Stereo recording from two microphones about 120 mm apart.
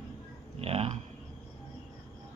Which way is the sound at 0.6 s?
55° right (ahead or behind).